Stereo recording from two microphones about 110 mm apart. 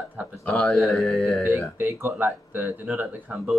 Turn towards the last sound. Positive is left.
turn(degrees=-10)  # may be behind; listen again after turning